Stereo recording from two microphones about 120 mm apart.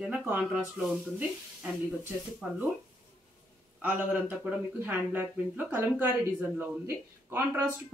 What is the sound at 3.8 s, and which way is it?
A woman's voice, 15° right (ahead or behind).